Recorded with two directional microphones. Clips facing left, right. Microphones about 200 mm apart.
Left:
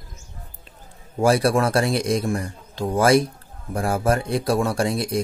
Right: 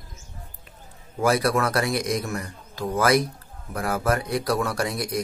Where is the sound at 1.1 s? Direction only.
30° left (ahead or behind).